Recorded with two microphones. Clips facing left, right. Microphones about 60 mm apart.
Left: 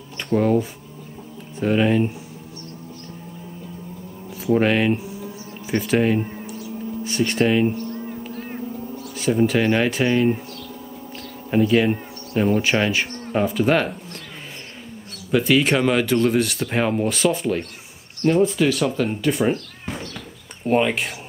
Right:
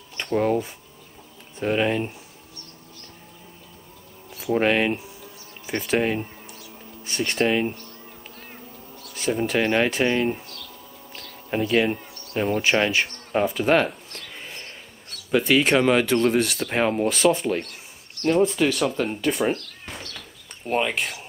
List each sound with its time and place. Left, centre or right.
0.2 s speech: centre
4.6 s speech: centre
5.2 s a sound: centre
7.1 s speech: centre
8.0 s a sound: left
9.1 s speech: centre
11.5 s speech: centre
15.3 s speech: centre
20.6 s speech: centre